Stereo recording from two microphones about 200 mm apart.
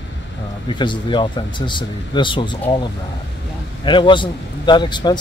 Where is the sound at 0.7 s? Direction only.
25° left (ahead or behind).